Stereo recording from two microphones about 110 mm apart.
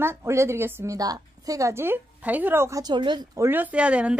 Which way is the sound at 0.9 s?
35° right (ahead or behind).